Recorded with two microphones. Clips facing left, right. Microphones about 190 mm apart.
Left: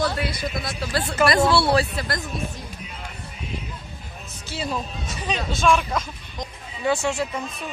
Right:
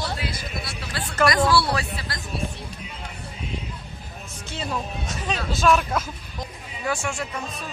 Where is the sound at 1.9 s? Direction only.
50° left (ahead or behind).